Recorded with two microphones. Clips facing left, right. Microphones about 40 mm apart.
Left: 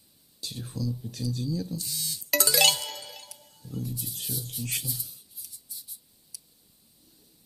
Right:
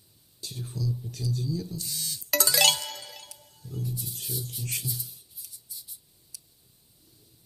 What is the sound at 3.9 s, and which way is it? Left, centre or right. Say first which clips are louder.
Speech: even; left.